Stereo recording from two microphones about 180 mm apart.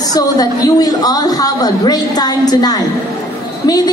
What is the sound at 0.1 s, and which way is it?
A man's voice, 20° left (ahead or behind).